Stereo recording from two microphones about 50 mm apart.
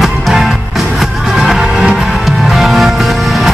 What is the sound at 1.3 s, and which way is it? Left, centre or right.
Music, centre.